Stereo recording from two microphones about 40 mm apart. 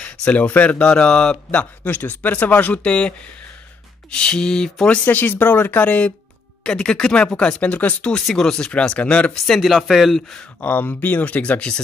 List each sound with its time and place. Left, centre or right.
0.3 s speech: left
1.9 s speech: left
2.8 s a sound: left
4.8 s speech: left
5.1 s speech: left
5.8 s speech: left
6.6 s a sound: centre
7.7 s speech: left
8.4 s speech: centre
8.7 s speech: left
9.6 s speech: centre
10.1 s speech: centre
10.6 s speech: left